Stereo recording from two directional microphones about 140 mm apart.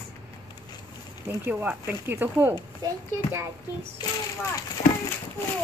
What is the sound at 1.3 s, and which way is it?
A child's voice, 15° right (ahead or behind).